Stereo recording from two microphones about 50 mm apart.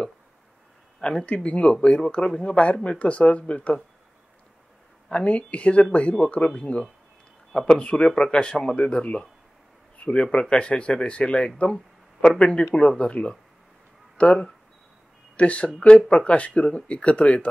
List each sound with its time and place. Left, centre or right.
1.0 s speech: left
5.1 s speech: left
9.9 s a sound: left
10.2 s speech: centre